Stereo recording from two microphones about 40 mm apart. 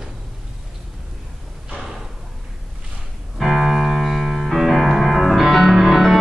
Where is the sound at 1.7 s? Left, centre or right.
Centre.